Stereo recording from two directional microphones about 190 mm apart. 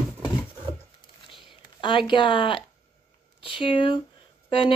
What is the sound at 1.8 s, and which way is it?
Speech, 25° left (ahead or behind).